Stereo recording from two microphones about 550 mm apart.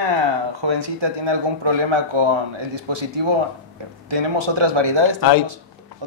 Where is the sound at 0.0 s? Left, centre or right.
Right.